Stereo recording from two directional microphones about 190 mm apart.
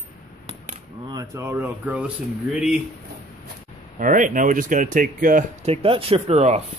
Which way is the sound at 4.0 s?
45° right (ahead or behind).